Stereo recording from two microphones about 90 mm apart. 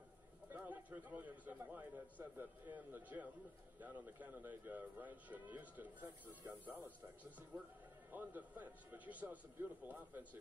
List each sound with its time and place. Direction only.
0.5 s a man's voice: 20° right (ahead or behind)